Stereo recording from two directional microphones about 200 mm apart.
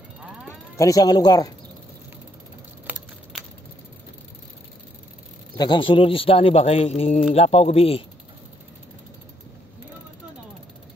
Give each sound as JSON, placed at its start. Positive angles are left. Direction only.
{"t": 0.5, "sound": "speech", "side_deg": 15}
{"t": 2.9, "sound": "a sound", "side_deg": -10}
{"t": 5.6, "sound": "speech", "side_deg": 25}